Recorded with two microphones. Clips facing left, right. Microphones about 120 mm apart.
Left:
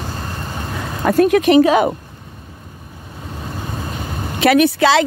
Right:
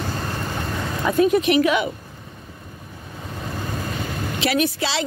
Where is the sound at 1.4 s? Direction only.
35° left (ahead or behind).